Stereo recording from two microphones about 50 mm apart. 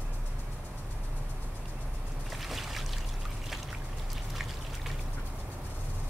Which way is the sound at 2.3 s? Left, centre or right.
Centre.